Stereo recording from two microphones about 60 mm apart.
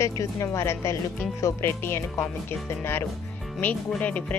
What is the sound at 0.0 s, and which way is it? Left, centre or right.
Speech, left.